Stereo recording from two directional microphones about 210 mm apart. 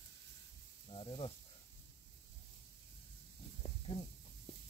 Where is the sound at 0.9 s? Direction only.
25° left (ahead or behind).